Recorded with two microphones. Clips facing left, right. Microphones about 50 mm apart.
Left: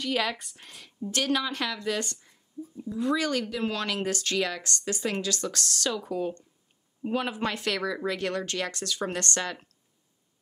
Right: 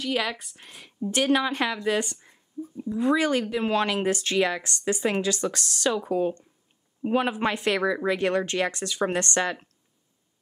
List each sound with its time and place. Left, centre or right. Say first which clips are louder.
0.0 s a woman's voice: right 1 dB; centre; by 9.7 s right